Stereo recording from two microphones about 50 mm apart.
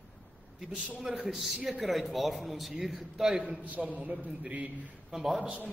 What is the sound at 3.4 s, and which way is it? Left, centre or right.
A man's voice, right.